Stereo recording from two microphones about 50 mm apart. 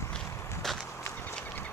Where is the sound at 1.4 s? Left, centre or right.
Left.